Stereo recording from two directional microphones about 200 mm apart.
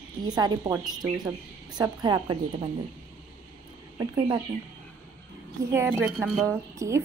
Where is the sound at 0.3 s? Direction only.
20° right (ahead or behind).